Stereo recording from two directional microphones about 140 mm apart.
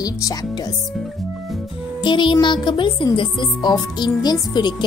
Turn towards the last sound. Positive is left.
turn(degrees=30)  # may be behind; listen again after turning